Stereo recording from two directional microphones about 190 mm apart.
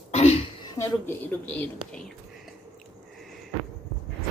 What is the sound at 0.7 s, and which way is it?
Speech, 10° left (ahead or behind).